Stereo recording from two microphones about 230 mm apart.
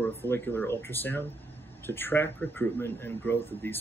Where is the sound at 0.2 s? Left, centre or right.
Centre.